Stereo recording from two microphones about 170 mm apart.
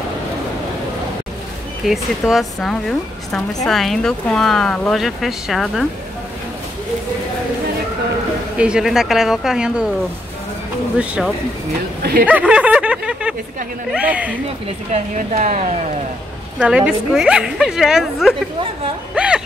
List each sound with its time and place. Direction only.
1.9 s speech: centre (ahead or behind)
8.5 s speech: 5° right (ahead or behind)
11.0 s speech: 5° right (ahead or behind)
12.0 s speech: 65° right (ahead or behind)
12.3 s snicker: 10° right (ahead or behind)
13.9 s speech: 10° right (ahead or behind)
14.9 s speech: 45° right (ahead or behind)
16.5 s speech: 5° right (ahead or behind)
19.1 s music: 5° right (ahead or behind)